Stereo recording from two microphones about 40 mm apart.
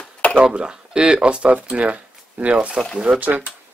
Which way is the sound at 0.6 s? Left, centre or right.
Right.